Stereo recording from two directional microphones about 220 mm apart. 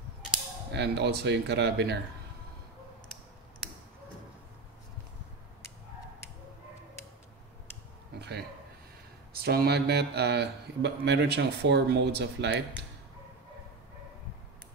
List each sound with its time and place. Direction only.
0.7 s a man's voice: 50° right (ahead or behind)
8.2 s a sound: 50° right (ahead or behind)
9.4 s a man's voice: 45° right (ahead or behind)